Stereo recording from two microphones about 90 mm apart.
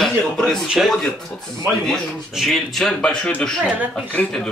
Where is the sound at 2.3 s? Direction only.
Centre (ahead or behind).